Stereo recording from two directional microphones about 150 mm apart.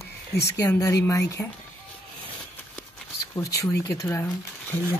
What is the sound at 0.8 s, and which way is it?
Speech, 25° left (ahead or behind).